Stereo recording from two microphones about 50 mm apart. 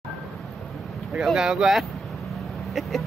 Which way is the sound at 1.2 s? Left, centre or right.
Centre.